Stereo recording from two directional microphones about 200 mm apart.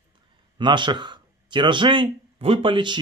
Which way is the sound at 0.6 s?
25° right (ahead or behind).